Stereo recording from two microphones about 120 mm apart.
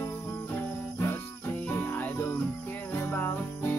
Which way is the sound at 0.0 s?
20° left (ahead or behind).